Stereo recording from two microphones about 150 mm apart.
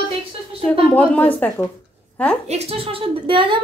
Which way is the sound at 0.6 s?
10° left (ahead or behind).